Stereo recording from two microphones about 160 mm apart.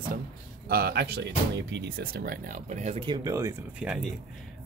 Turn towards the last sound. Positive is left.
turn(degrees=-5)  # may be behind; listen again after turning